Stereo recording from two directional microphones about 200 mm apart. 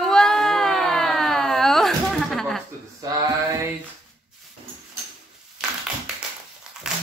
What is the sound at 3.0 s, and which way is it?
Male singing, 20° right (ahead or behind).